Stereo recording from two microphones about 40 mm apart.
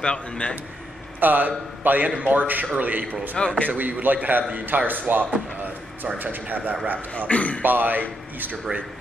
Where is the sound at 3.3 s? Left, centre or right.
Left.